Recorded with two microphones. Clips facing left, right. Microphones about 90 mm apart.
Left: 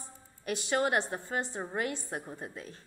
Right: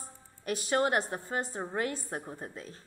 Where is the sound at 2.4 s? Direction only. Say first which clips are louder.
Even; 30° right (ahead or behind).